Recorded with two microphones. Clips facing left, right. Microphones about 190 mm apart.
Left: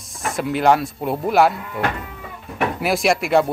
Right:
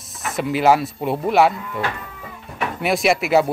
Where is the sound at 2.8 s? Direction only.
Centre (ahead or behind).